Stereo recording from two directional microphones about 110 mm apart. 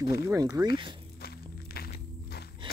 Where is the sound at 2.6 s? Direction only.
50° right (ahead or behind).